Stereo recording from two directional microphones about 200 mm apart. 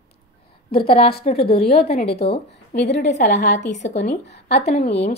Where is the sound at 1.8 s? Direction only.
50° left (ahead or behind).